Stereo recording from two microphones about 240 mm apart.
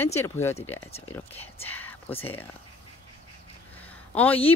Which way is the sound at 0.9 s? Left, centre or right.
Left.